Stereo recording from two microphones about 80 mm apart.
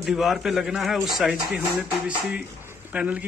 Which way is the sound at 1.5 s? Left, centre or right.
Centre.